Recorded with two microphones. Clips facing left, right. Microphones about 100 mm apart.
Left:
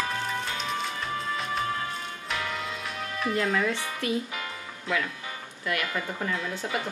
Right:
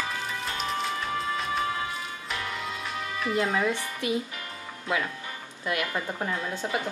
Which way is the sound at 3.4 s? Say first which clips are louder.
Right 1 dB; 15° right (ahead or behind).